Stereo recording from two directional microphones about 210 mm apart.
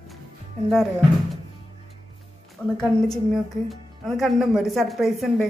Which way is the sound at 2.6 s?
5° left (ahead or behind).